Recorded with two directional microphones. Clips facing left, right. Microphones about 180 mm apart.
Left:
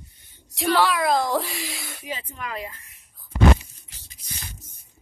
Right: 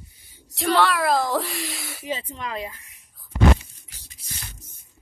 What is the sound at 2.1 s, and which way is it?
Speech, 25° right (ahead or behind).